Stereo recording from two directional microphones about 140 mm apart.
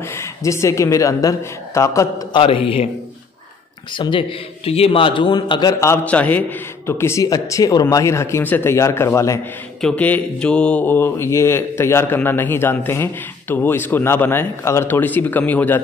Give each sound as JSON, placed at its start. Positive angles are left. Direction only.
{"t": 0.0, "sound": "a woman's voice", "side_deg": 20}
{"t": 2.3, "sound": "speech", "side_deg": 40}
{"t": 3.9, "sound": "a man's voice", "side_deg": 35}
{"t": 6.0, "sound": "speech", "side_deg": 10}
{"t": 9.8, "sound": "speech", "side_deg": 5}